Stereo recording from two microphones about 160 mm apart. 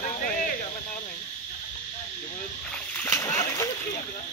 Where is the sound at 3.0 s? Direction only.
15° left (ahead or behind).